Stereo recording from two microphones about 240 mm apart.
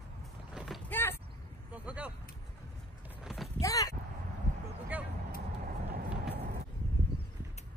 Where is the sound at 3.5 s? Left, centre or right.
Centre.